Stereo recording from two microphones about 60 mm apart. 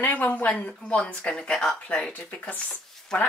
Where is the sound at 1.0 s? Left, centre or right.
Centre.